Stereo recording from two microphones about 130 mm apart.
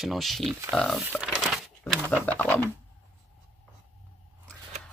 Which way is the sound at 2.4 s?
15° left (ahead or behind).